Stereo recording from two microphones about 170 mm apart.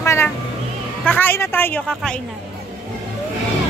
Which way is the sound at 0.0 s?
15° left (ahead or behind).